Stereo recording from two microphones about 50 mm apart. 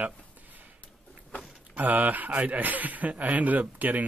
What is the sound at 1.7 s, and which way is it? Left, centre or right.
Speech, right.